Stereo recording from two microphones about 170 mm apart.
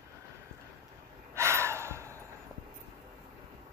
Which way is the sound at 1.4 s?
15° right (ahead or behind).